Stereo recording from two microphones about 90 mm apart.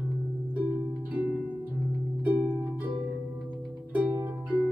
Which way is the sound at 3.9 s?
20° right (ahead or behind).